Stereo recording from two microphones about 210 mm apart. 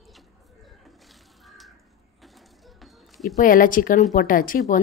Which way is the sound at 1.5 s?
Centre (ahead or behind).